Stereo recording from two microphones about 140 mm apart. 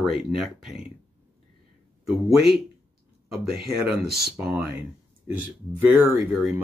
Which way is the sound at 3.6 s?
90° right.